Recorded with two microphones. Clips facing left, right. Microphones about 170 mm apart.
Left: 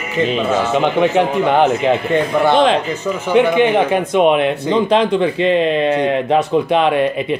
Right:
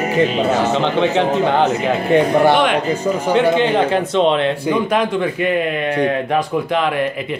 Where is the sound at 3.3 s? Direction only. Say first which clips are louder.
Left 3 dB; 15° left (ahead or behind).